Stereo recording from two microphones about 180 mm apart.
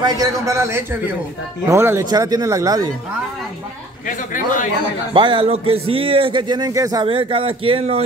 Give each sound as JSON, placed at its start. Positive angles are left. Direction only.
{"t": 0.0, "sound": "speech", "side_deg": -20}
{"t": 4.1, "sound": "a man's voice", "side_deg": 45}
{"t": 5.1, "sound": "a man's voice", "side_deg": -30}